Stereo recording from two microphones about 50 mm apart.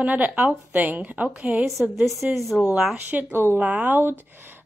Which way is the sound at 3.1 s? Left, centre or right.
Right.